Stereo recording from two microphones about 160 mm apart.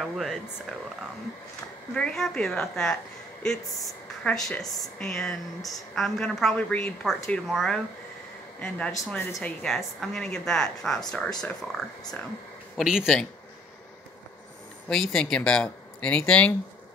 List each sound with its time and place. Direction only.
0.0 s a woman's voice: centre (ahead or behind)
2.0 s a woman's voice: 5° left (ahead or behind)
12.7 s a woman's voice: 5° right (ahead or behind)
14.9 s a woman's voice: centre (ahead or behind)